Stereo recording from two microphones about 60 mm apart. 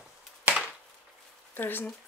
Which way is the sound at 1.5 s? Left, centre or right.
Left.